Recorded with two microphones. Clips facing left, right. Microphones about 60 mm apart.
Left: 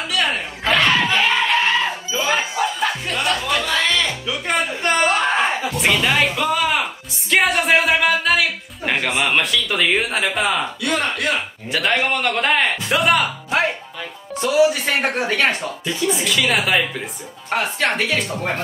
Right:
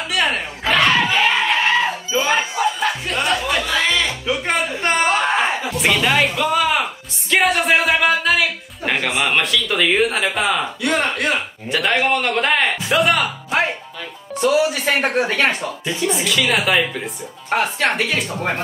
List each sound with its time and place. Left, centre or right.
0.2 s screaming: centre
2.2 s music: centre
5.0 s a sound: centre
10.8 s speech: right
11.7 s speech: centre